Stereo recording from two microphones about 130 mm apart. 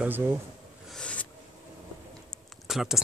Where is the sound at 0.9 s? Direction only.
10° left (ahead or behind).